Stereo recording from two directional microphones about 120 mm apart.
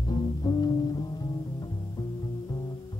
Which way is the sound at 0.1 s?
35° left (ahead or behind).